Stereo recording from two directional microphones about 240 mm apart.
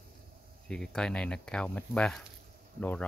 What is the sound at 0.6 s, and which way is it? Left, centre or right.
Speech, centre.